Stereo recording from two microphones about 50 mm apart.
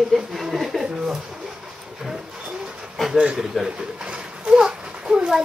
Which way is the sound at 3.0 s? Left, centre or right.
Centre.